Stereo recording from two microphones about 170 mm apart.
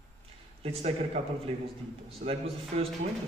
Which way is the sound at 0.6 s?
35° right (ahead or behind).